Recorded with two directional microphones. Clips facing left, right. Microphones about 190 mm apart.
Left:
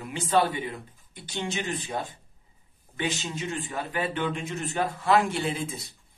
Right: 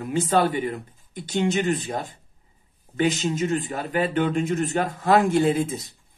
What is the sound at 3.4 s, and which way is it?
Speech, 40° right (ahead or behind).